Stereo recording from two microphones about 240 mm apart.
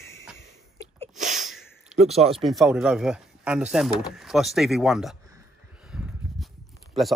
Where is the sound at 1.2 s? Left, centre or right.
Right.